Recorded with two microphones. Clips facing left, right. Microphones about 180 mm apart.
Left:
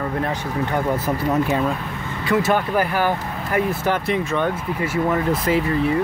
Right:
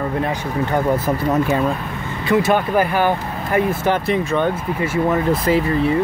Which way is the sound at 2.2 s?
20° right (ahead or behind).